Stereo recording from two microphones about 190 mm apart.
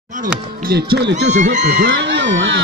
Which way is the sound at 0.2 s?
55° right (ahead or behind).